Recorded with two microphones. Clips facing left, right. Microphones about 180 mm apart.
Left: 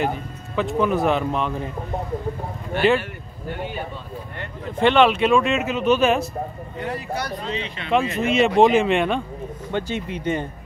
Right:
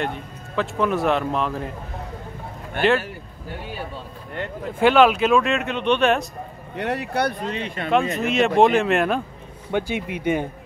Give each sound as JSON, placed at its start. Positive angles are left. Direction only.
{"t": 0.0, "sound": "speech", "side_deg": 0}
{"t": 4.7, "sound": "speech", "side_deg": -5}
{"t": 6.8, "sound": "speech", "side_deg": -70}
{"t": 8.2, "sound": "speech", "side_deg": 0}